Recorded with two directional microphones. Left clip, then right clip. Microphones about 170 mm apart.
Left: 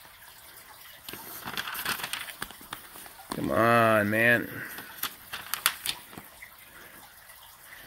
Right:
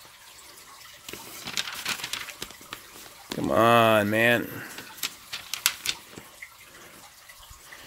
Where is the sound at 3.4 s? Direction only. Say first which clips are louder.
Right 3 dB; 15° right (ahead or behind).